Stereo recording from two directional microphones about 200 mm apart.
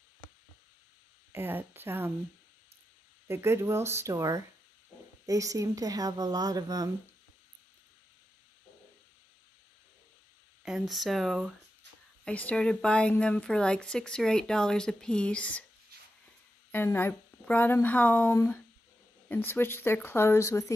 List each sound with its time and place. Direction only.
1.3 s speech: 10° right (ahead or behind)
3.3 s speech: 10° right (ahead or behind)
10.6 s a woman's voice: centre (ahead or behind)
16.7 s speech: 10° left (ahead or behind)